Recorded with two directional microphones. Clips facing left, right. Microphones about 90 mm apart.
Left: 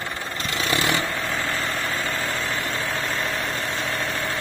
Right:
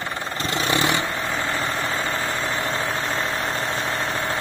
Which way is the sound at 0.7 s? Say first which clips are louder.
Right 1 dB; 25° right (ahead or behind).